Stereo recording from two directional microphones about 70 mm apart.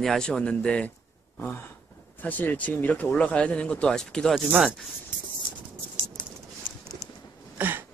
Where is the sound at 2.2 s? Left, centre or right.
Left.